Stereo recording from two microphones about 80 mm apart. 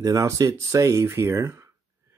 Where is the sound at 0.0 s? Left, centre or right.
Right.